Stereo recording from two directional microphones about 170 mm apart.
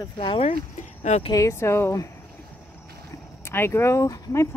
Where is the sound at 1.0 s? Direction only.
45° left (ahead or behind).